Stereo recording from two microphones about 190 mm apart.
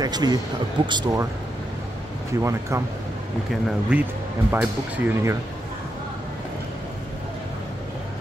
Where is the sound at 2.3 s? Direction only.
15° right (ahead or behind).